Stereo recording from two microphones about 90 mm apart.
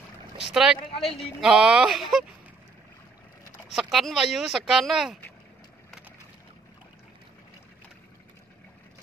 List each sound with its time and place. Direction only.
0.5 s speech: 5° right (ahead or behind)
0.9 s speech: 90° left
1.4 s speech: 5° right (ahead or behind)
3.6 s speech: 5° right (ahead or behind)